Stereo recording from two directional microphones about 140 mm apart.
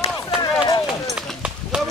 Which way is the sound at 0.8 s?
5° right (ahead or behind).